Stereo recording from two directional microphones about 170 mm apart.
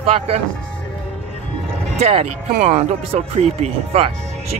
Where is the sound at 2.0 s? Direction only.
35° right (ahead or behind).